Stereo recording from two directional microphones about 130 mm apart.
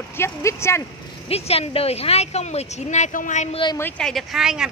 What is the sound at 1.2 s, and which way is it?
Speech, 50° left (ahead or behind).